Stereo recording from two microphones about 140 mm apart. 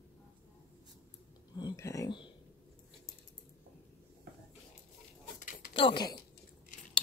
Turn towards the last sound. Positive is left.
turn(degrees=35)  # may be behind; listen again after turning